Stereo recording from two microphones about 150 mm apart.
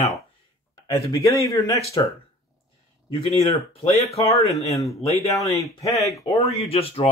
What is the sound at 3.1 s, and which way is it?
Speech, 40° left (ahead or behind).